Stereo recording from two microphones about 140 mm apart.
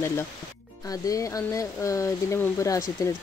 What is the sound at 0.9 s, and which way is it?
Speech, 25° left (ahead or behind).